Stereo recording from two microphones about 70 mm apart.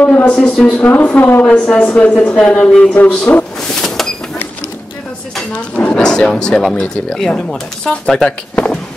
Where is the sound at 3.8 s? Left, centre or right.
Centre.